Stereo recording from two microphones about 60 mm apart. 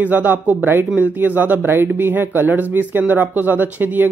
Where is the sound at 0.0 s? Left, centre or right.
Right.